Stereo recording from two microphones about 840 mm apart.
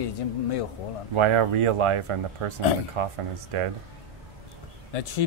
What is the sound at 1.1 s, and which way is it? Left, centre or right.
Speech, right.